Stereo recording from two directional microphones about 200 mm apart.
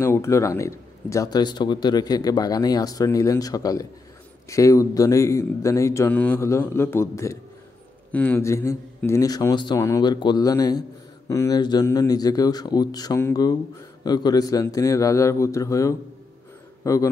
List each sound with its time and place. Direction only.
0.0 s a man's voice: 15° left (ahead or behind)